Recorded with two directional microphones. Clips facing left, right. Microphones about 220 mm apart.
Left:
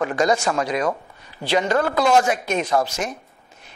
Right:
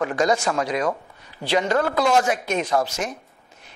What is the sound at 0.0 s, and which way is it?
A woman's voice, 10° left (ahead or behind).